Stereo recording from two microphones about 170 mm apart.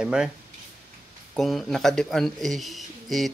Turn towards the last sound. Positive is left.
turn(degrees=0)  # may be behind; listen again after turning